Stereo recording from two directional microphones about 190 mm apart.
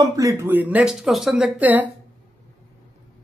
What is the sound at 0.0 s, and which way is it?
Speech, 20° right (ahead or behind).